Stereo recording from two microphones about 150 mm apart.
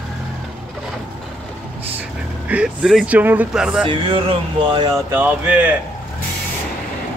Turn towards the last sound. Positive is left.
turn(degrees=-10)  # may be behind; listen again after turning